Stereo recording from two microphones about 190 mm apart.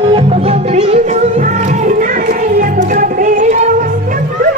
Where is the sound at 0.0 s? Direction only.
30° right (ahead or behind).